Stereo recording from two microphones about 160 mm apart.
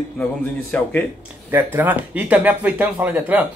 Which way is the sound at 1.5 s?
10° right (ahead or behind).